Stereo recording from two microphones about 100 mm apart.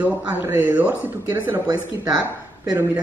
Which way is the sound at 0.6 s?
15° right (ahead or behind).